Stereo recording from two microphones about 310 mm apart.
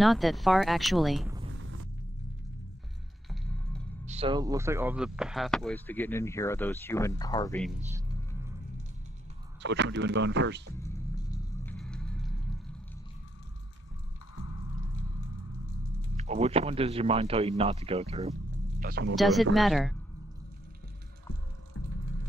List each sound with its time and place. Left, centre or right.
0.0 s speech: centre
1.5 s a sound: right
4.0 s speech: centre
9.6 s speech: right
10.8 s music: centre
16.3 s speech: centre
19.1 s speech: centre